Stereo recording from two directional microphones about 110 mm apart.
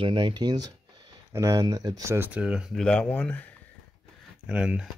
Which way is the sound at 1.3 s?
25° right (ahead or behind).